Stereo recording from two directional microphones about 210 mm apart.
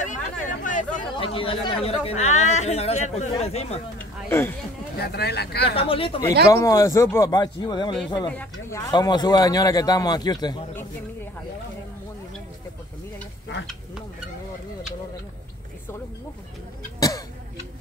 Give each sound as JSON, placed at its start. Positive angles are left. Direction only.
{"t": 0.0, "sound": "chatter", "side_deg": 35}
{"t": 1.1, "sound": "speech", "side_deg": 25}
{"t": 4.3, "sound": "speech", "side_deg": 10}
{"t": 4.9, "sound": "speech", "side_deg": 50}
{"t": 5.7, "sound": "speech", "side_deg": 25}
{"t": 6.5, "sound": "speech", "side_deg": 15}
{"t": 8.3, "sound": "speech", "side_deg": 10}